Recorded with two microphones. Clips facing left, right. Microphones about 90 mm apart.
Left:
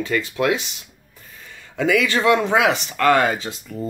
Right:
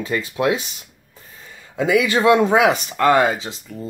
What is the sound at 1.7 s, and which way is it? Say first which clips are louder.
Speech: right 2 dB; 20° right (ahead or behind).